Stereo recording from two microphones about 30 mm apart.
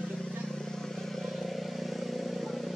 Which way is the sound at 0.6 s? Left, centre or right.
Left.